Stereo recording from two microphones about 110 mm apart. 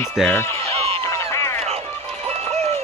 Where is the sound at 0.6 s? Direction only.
60° right (ahead or behind).